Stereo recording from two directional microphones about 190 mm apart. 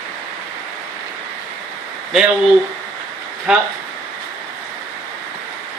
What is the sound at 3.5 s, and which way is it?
Speech, 5° right (ahead or behind).